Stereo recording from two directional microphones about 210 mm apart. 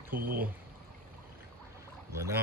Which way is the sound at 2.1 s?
15° right (ahead or behind).